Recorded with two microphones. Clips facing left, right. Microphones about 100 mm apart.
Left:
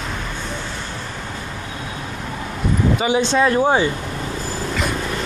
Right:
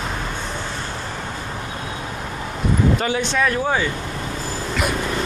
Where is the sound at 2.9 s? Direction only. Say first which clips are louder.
Left 4 dB; 15° left (ahead or behind).